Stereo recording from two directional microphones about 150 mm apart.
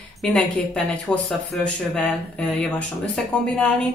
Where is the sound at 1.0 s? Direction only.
5° left (ahead or behind).